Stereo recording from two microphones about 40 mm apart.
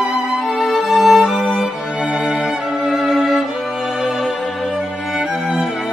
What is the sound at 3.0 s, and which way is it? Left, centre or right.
Violin, centre.